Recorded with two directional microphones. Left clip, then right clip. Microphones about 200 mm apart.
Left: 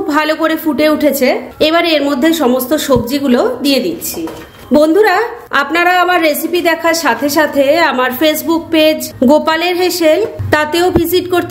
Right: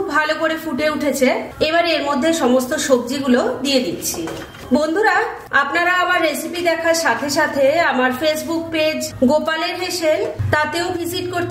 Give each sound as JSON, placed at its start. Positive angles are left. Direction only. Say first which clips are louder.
{"t": 0.1, "sound": "a woman's voice", "louder": "left 6 dB", "side_deg": 40}